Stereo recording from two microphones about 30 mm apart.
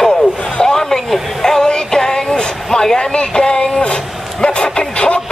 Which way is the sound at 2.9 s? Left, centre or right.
Left.